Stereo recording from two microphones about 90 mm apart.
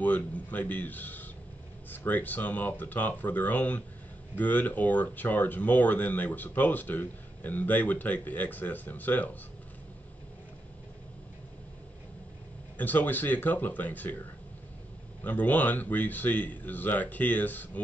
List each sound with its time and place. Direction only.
0.0 s speech: 20° left (ahead or behind)
12.7 s speech: 20° left (ahead or behind)
15.2 s speech: 20° left (ahead or behind)